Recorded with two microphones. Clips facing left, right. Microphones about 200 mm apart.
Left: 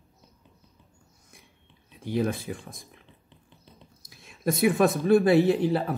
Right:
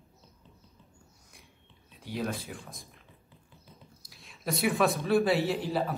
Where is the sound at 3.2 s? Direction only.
25° left (ahead or behind).